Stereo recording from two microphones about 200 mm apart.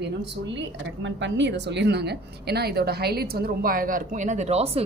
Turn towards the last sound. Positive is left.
turn(degrees=-30)  # may be behind; listen again after turning